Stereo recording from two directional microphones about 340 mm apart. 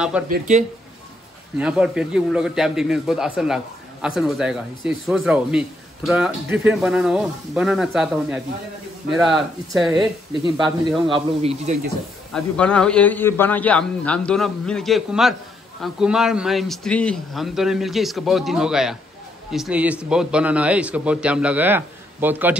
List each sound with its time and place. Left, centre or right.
0.3 s speech: right
1.6 s a man's voice: centre
11.1 s speech: centre
12.3 s a man's voice: centre